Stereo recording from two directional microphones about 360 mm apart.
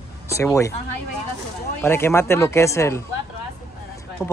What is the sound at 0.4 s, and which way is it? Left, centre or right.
Speech, centre.